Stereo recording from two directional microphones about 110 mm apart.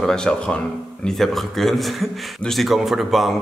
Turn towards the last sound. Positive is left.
turn(degrees=0)  # may be behind; listen again after turning